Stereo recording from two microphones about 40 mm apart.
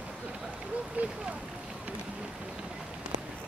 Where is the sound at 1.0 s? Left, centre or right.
Right.